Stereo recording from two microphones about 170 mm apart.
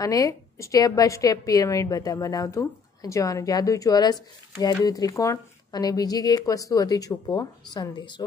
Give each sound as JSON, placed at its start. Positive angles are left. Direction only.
{"t": 0.0, "sound": "a woman's voice", "side_deg": 20}